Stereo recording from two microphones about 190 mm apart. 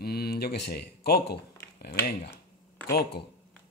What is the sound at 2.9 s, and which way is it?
Speech, 55° left (ahead or behind).